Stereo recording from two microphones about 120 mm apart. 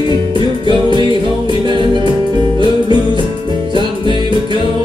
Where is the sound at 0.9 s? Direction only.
40° right (ahead or behind).